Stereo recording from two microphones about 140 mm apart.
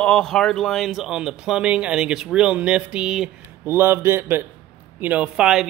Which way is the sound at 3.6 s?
15° right (ahead or behind).